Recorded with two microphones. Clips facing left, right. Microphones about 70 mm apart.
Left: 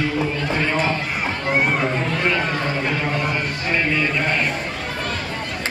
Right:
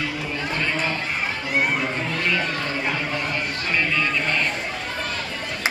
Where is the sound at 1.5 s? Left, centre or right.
Left.